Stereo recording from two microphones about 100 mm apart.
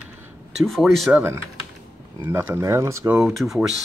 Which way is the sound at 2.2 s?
20° right (ahead or behind).